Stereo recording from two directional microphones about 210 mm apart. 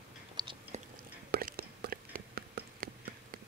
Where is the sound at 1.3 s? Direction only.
45° right (ahead or behind).